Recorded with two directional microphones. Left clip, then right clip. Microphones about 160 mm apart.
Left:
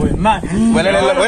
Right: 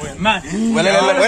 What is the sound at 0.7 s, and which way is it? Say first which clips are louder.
Speech: even; 10° right (ahead or behind).